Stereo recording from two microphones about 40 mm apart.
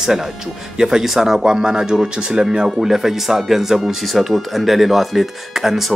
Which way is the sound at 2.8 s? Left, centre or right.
Centre.